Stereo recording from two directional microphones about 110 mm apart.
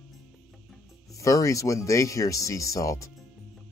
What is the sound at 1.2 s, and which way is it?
Speech, 30° left (ahead or behind).